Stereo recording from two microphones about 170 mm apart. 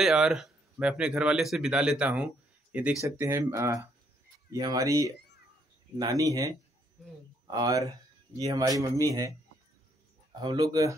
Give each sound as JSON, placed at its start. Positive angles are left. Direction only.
{"t": 0.0, "sound": "speech", "side_deg": -5}
{"t": 10.4, "sound": "speech", "side_deg": -25}